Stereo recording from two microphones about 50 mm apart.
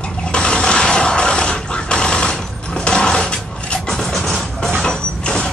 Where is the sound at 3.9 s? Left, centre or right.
Centre.